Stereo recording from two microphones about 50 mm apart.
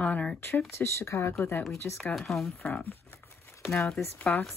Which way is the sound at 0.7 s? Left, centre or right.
Left.